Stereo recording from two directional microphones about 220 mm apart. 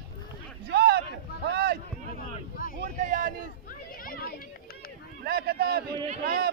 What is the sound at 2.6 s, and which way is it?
Vehicle, 40° left (ahead or behind).